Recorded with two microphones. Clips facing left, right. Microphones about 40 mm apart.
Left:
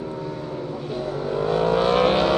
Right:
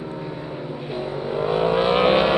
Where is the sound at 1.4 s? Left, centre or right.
Right.